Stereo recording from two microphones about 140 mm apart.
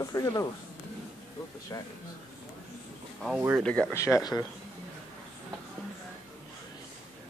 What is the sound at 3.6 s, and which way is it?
Speech, 10° left (ahead or behind).